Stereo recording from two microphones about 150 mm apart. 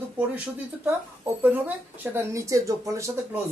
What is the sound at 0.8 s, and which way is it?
Speech, 15° right (ahead or behind).